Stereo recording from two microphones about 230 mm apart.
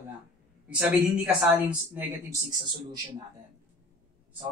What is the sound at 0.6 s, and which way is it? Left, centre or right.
A man's voice, centre.